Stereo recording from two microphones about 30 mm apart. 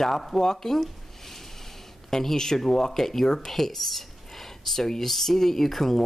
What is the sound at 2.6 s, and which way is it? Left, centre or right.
Speech, centre.